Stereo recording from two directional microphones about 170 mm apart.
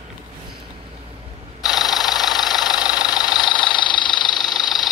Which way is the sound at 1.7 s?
Centre (ahead or behind).